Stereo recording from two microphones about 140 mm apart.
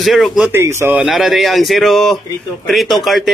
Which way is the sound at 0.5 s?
20° right (ahead or behind).